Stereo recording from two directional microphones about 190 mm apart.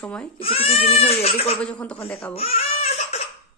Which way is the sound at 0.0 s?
5° left (ahead or behind).